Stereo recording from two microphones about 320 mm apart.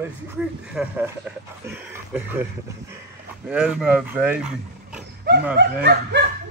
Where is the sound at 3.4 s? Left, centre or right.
Centre.